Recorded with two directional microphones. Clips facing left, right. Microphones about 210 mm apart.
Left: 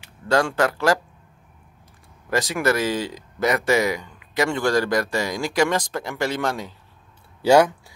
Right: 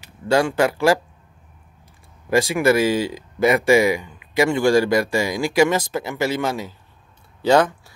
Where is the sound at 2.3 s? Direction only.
10° right (ahead or behind).